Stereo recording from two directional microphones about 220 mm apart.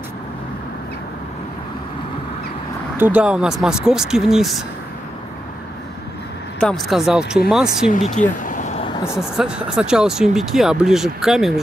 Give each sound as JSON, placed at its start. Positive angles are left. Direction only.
{"t": 3.0, "sound": "speech", "side_deg": -5}
{"t": 6.6, "sound": "speech", "side_deg": 0}
{"t": 8.1, "sound": "a sound", "side_deg": 35}
{"t": 8.8, "sound": "vehicle", "side_deg": 15}
{"t": 9.2, "sound": "speech", "side_deg": -5}